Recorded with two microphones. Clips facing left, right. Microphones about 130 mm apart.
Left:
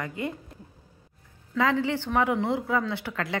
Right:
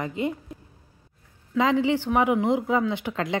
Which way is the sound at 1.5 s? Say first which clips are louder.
Right 3 dB; 15° right (ahead or behind).